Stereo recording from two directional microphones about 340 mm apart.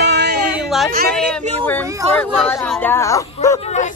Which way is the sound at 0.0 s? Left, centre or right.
Right.